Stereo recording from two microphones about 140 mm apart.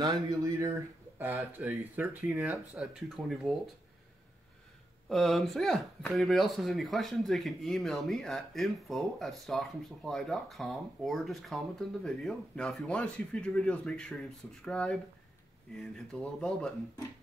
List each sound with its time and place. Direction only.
0.0 s speech: 25° right (ahead or behind)
2.2 s speech: centre (ahead or behind)
5.1 s speech: centre (ahead or behind)